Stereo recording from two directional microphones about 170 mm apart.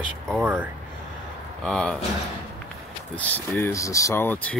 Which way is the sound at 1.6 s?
5° left (ahead or behind).